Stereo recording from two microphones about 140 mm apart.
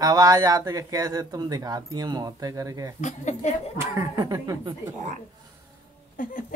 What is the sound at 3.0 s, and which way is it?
Speech, 55° left (ahead or behind).